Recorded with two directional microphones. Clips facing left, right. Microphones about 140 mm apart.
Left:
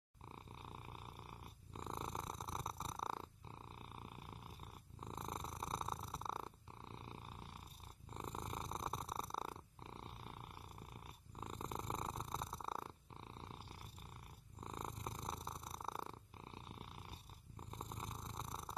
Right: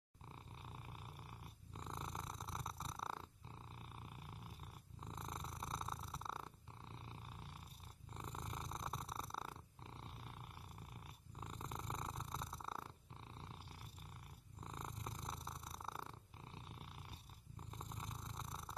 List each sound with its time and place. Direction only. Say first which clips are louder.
1.9 s purr: left 3 dB; 30° left (ahead or behind)
5.1 s purr: left 3 dB; 30° left (ahead or behind)
8.2 s purr: left 3 dB; 30° left (ahead or behind)
11.3 s purr: left 3 dB; 30° left (ahead or behind)
14.6 s purr: left 3 dB; 30° left (ahead or behind)
17.7 s purr: left 2 dB; 35° left (ahead or behind)